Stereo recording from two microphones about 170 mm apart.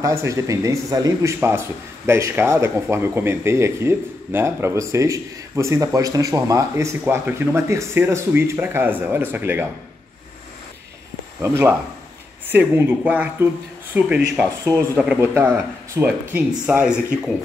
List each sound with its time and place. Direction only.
0.0 s speech: 15° right (ahead or behind)
11.4 s speech: 15° right (ahead or behind)